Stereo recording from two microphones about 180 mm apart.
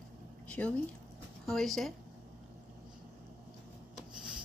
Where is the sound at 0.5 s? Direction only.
5° left (ahead or behind).